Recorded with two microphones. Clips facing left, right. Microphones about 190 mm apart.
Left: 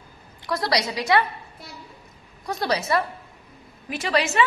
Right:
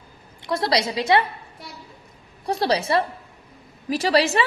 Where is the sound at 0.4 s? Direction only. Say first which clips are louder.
Right 2 dB; 25° right (ahead or behind).